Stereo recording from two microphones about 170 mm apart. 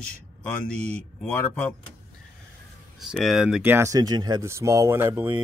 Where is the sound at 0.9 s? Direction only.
5° left (ahead or behind).